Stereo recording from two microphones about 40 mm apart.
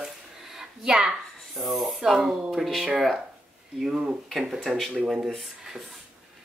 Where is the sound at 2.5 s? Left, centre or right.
Centre.